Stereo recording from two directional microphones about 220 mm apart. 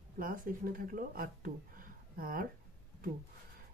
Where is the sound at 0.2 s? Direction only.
40° right (ahead or behind).